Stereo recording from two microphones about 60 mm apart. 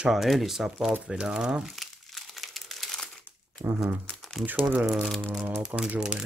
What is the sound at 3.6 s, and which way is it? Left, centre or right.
Speech, right.